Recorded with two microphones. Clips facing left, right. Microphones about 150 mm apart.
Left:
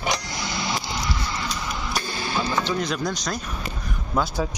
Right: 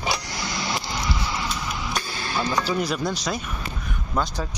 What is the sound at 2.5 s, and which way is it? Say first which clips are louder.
Speech: right 3 dB; 10° right (ahead or behind).